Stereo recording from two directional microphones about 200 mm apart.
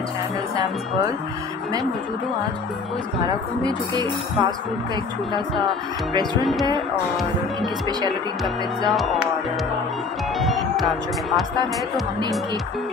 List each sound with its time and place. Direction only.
3.6 s speech: 20° right (ahead or behind)
8.8 s speech: centre (ahead or behind)
10.4 s speech: centre (ahead or behind)